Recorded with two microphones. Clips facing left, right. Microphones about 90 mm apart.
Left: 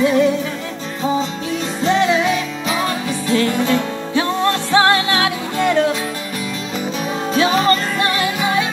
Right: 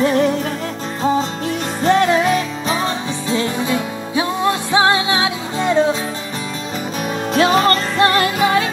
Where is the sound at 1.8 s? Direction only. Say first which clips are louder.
Right 2 dB; 45° right (ahead or behind).